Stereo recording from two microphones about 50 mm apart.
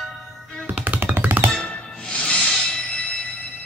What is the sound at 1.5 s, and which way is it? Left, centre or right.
Music, centre.